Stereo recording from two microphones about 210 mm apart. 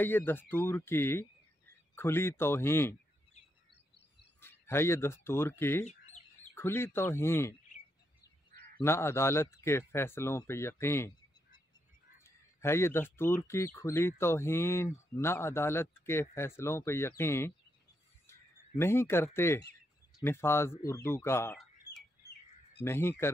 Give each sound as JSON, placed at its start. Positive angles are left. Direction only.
{"t": 0.0, "sound": "speech", "side_deg": 10}
{"t": 4.4, "sound": "speech", "side_deg": 10}
{"t": 5.9, "sound": "chirp", "side_deg": 35}
{"t": 6.5, "sound": "speech", "side_deg": 10}
{"t": 8.8, "sound": "speech", "side_deg": 10}
{"t": 12.2, "sound": "speech", "side_deg": 10}
{"t": 18.8, "sound": "speech", "side_deg": 10}
{"t": 22.8, "sound": "speech", "side_deg": 10}